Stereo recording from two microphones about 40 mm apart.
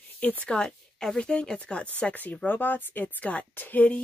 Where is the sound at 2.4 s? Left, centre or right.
Left.